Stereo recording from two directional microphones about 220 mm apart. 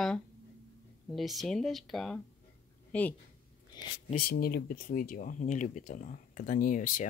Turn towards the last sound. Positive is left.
turn(degrees=35)  # may be behind; listen again after turning